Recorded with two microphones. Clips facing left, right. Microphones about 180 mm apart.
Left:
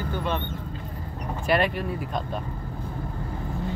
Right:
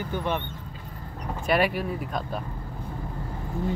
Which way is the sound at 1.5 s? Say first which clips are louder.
Even; 5° right (ahead or behind).